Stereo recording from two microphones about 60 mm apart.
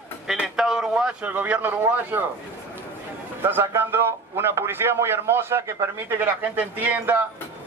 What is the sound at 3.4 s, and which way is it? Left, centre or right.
A man's voice, right.